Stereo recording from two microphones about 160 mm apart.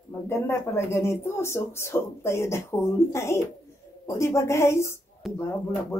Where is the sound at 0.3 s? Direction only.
15° left (ahead or behind).